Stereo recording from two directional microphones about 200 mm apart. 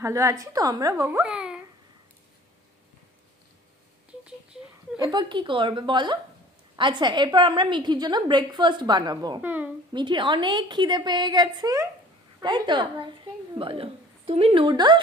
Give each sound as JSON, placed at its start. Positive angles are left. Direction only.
{"t": 0.0, "sound": "a woman's voice", "side_deg": -15}
{"t": 4.9, "sound": "a woman's voice", "side_deg": -20}
{"t": 9.4, "sound": "a woman's voice", "side_deg": -10}
{"t": 9.9, "sound": "a woman's voice", "side_deg": -25}